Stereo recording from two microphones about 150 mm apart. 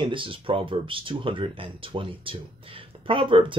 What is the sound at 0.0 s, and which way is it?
Speech, 35° right (ahead or behind).